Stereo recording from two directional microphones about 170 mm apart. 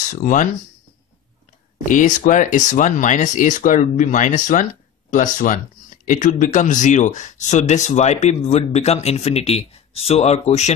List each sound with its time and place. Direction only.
0.1 s speech: 50° left (ahead or behind)
1.9 s speech: 50° left (ahead or behind)